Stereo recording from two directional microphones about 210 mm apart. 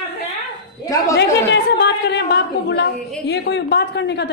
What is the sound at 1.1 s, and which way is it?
A woman's voice, 55° left (ahead or behind).